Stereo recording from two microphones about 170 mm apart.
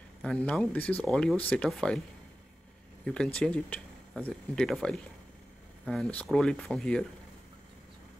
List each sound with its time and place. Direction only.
0.2 s speech: 5° left (ahead or behind)
3.3 s speech: 5° left (ahead or behind)